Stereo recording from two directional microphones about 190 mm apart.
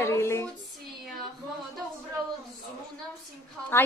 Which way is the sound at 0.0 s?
15° left (ahead or behind).